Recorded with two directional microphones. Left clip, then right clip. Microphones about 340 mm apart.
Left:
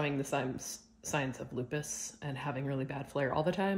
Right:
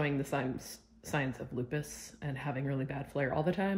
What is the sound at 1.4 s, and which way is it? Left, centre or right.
Speech, centre.